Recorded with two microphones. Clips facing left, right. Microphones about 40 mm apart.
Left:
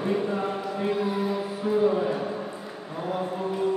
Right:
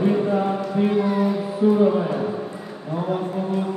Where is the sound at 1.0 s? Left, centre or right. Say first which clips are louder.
Right 6 dB; right.